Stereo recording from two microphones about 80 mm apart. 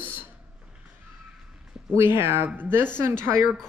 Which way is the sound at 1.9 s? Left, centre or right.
Right.